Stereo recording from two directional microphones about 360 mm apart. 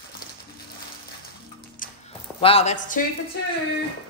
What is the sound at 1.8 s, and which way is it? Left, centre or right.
Music, left.